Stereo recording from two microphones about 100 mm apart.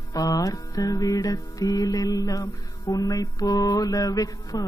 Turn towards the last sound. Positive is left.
turn(degrees=40)  # may be behind; listen again after turning